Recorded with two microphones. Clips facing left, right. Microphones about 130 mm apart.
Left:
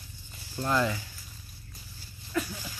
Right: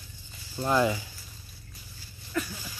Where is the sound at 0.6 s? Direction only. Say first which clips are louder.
Right 3 dB; 15° right (ahead or behind).